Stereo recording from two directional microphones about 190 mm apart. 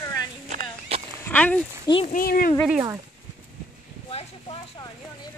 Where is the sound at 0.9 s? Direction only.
30° right (ahead or behind).